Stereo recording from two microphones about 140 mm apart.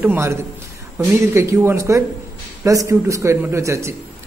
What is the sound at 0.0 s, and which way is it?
A man's voice, 15° right (ahead or behind).